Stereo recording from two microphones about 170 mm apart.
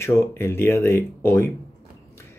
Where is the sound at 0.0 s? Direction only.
15° left (ahead or behind).